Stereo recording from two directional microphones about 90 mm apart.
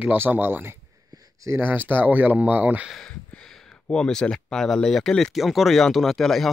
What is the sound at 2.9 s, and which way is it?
Speech, 5° left (ahead or behind).